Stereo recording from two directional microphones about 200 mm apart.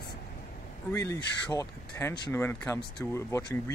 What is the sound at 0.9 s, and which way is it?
Speech, 15° left (ahead or behind).